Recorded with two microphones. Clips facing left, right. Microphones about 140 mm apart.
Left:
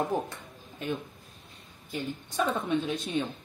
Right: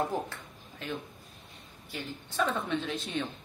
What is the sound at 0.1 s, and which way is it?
A woman's voice, 20° left (ahead or behind).